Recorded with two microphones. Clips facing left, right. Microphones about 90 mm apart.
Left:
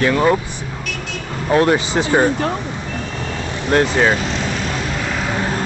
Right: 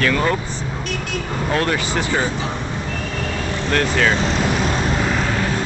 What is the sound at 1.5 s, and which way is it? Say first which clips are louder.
Speech: left 7 dB; 20° left (ahead or behind).